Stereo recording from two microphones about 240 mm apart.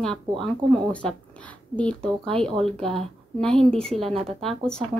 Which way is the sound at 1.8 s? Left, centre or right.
Centre.